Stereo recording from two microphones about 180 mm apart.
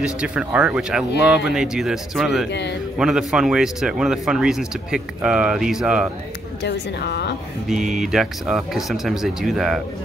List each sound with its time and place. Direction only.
0.0 s speech: 5° right (ahead or behind)
6.6 s speech: 70° left (ahead or behind)
8.0 s speech: centre (ahead or behind)